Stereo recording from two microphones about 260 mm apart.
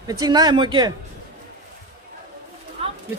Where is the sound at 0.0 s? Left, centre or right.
Centre.